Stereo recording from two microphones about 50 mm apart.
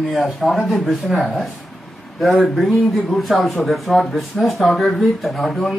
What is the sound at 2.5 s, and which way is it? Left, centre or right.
Speech, centre.